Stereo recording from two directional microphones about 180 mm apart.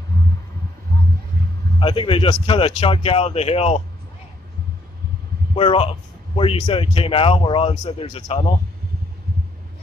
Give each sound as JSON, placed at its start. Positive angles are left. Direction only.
{"t": 1.8, "sound": "a man's voice", "side_deg": 30}
{"t": 5.5, "sound": "a man's voice", "side_deg": 30}